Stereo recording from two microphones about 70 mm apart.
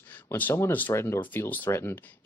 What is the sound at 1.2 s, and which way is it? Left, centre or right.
Speech, left.